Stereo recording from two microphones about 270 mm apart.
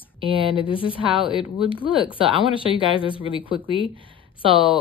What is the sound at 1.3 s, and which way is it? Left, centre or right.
Speech, centre.